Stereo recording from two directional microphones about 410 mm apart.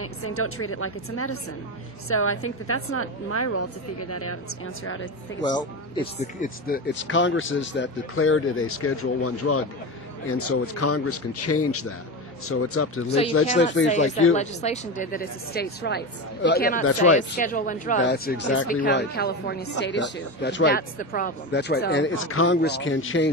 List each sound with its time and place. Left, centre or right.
0.0 s a woman's voice: left
5.5 s a woman's voice: centre; by 13.0 s left
13.5 s speech: left